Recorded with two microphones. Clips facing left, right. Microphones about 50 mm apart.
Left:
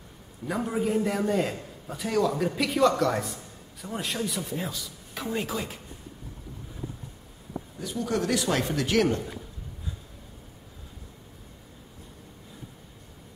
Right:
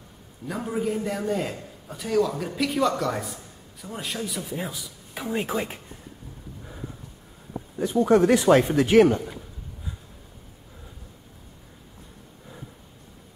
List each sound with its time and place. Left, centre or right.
0.5 s a man's voice: centre
4.5 s speech: centre; by 5.8 s right
7.8 s speech: right